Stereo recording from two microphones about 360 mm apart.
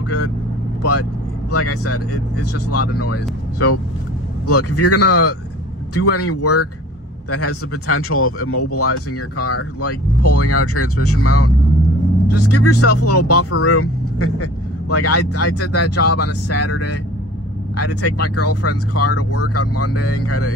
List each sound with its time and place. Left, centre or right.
1.5 s vehicle: left
2.7 s speech: left